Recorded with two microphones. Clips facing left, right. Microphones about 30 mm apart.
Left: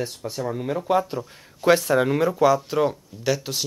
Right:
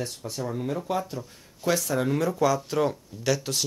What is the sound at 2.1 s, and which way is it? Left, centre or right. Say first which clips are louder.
Speech: left 2 dB; centre.